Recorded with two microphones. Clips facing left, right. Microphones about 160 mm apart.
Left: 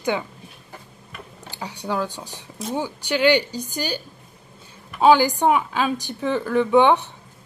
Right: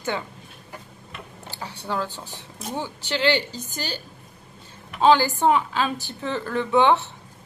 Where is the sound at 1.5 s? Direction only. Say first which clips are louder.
Left 3 dB; 15° left (ahead or behind).